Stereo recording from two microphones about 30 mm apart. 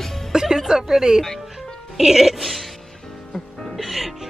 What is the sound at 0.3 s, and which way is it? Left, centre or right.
Music, centre.